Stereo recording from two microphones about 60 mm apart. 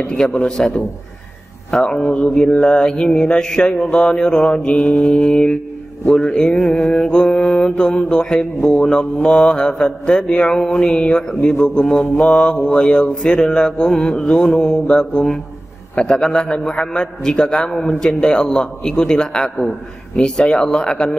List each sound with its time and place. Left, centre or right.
0.0 s mantra: centre
12.0 s mantra: left